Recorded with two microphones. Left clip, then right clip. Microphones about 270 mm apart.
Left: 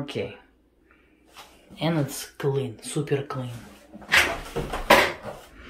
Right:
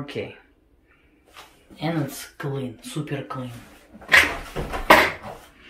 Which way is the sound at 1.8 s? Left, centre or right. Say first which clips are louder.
Left 1 dB; centre.